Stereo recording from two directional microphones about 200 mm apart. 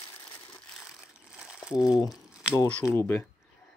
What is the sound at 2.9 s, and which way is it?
Speech, 10° left (ahead or behind).